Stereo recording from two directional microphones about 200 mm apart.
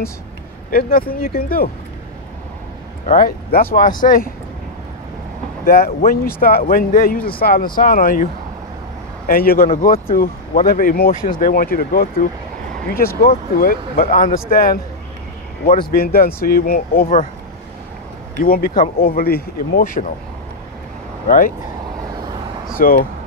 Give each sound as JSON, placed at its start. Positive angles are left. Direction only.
{"t": 0.7, "sound": "speech", "side_deg": 45}
{"t": 3.1, "sound": "speech", "side_deg": 45}
{"t": 5.7, "sound": "speech", "side_deg": 45}
{"t": 9.3, "sound": "speech", "side_deg": 45}
{"t": 15.9, "sound": "speech", "side_deg": 50}
{"t": 18.4, "sound": "speech", "side_deg": 45}
{"t": 21.3, "sound": "speech", "side_deg": 45}
{"t": 22.8, "sound": "speech", "side_deg": 45}